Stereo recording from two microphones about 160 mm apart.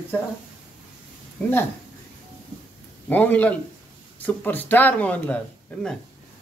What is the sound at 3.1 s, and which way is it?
Speech, 10° left (ahead or behind).